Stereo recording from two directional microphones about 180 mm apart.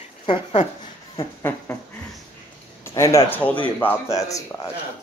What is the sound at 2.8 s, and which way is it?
Speech, 15° left (ahead or behind).